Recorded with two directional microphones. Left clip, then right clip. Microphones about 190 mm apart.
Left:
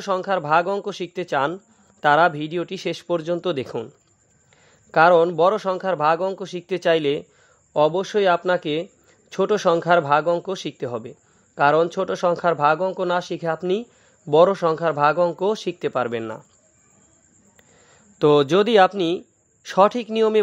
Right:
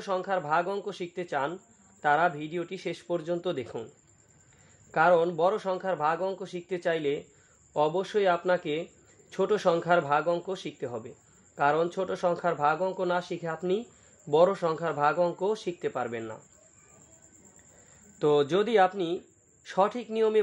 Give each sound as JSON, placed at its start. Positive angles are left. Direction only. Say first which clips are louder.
{"t": 0.0, "sound": "a man's voice", "louder": "left 7 dB", "side_deg": 35}
{"t": 4.9, "sound": "a man's voice", "louder": "left 8 dB", "side_deg": 40}
{"t": 18.2, "sound": "a man's voice", "louder": "left 8 dB", "side_deg": 40}